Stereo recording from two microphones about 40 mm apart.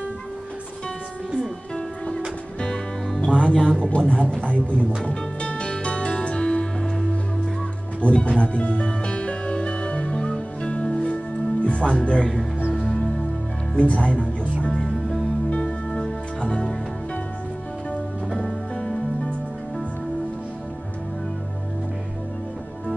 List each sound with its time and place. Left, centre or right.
3.2 s speech: left
3.9 s music: left
8.1 s music: left
10.7 s music: left
11.6 s speech: left
13.7 s speech: left
15.9 s music: left
18.8 s music: centre